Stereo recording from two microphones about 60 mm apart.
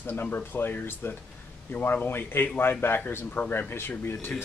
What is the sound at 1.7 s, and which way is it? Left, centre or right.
Speech, left.